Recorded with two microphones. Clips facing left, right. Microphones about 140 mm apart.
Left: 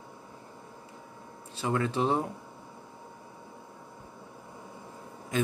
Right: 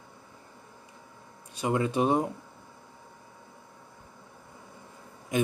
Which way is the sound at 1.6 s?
15° right (ahead or behind).